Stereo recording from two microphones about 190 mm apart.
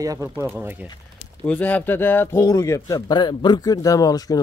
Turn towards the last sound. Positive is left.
turn(degrees=20)  # may be behind; listen again after turning